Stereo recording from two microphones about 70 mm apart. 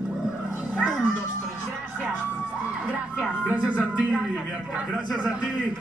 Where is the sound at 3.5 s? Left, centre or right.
Centre.